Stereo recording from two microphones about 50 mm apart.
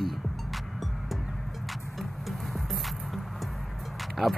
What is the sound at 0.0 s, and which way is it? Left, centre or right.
Music, centre.